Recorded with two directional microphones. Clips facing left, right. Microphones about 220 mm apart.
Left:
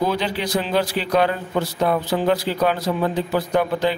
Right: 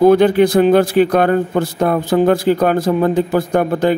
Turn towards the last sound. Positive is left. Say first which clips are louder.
# right 5 dB
turn(degrees=-50)  # may be behind; listen again after turning